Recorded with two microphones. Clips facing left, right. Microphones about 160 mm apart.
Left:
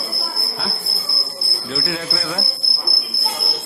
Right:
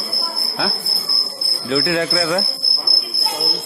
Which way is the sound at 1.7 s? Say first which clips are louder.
Right 8 dB; 90° right.